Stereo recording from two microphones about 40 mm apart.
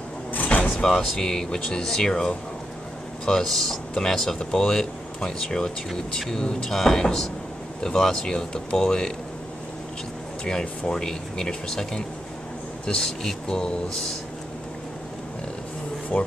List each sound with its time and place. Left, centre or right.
0.3 s vehicle: left
0.8 s speech: centre
3.4 s speech: centre
3.9 s speech: centre
10.4 s speech: centre
16.1 s speech: left